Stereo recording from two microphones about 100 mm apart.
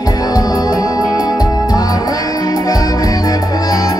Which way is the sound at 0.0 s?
40° left (ahead or behind).